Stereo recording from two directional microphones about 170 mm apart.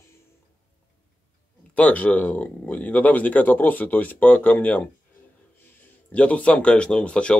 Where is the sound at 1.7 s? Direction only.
10° left (ahead or behind).